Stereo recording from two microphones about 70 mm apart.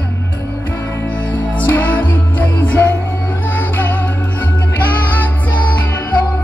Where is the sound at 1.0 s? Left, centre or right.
Left.